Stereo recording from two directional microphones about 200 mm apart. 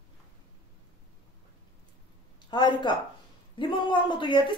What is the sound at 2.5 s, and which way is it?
Speech, 20° left (ahead or behind).